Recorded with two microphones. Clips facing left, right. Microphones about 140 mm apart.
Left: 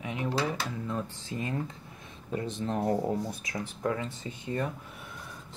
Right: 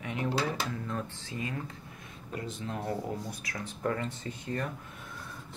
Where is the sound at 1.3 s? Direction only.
30° left (ahead or behind).